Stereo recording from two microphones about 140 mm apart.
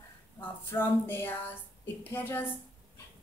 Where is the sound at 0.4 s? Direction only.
15° left (ahead or behind).